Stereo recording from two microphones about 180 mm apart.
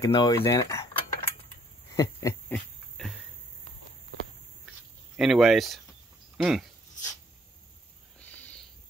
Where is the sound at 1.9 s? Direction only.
15° left (ahead or behind).